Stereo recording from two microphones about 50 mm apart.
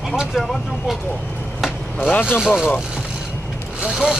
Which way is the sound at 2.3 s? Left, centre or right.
Centre.